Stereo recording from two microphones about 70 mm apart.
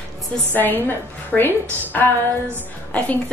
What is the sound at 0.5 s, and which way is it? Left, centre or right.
A woman's voice, left.